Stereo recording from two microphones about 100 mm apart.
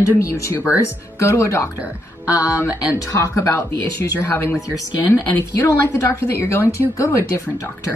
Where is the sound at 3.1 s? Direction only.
30° left (ahead or behind).